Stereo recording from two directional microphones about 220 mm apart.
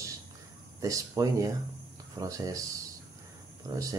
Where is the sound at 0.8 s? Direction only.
15° right (ahead or behind).